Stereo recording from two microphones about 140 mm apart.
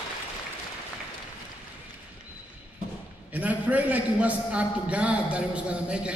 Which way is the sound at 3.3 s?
10° right (ahead or behind).